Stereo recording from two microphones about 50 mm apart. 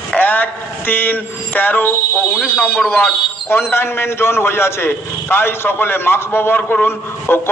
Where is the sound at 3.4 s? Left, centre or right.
Left.